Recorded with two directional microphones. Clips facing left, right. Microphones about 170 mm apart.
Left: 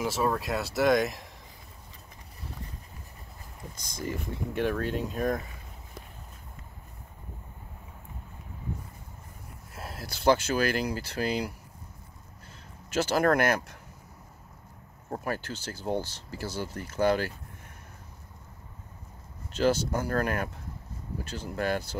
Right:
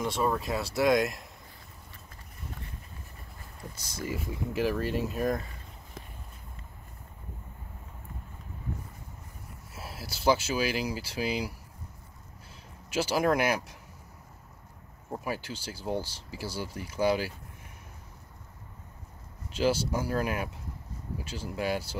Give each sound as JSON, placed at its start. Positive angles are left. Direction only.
{"t": 0.0, "sound": "speech", "side_deg": 0}
{"t": 3.7, "sound": "speech", "side_deg": -5}
{"t": 9.8, "sound": "speech", "side_deg": -5}
{"t": 12.9, "sound": "speech", "side_deg": -10}
{"t": 15.2, "sound": "speech", "side_deg": -10}
{"t": 19.5, "sound": "speech", "side_deg": -10}